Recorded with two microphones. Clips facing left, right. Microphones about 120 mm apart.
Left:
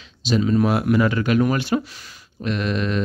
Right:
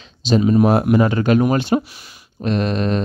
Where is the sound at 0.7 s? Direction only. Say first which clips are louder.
Right 4 dB; 35° right (ahead or behind).